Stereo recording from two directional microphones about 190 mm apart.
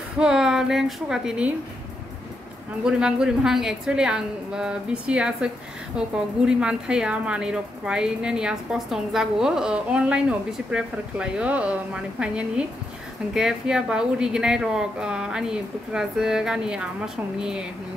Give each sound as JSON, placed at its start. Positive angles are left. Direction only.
{"t": 0.2, "sound": "a woman's voice", "side_deg": -5}
{"t": 2.8, "sound": "a woman's voice", "side_deg": -5}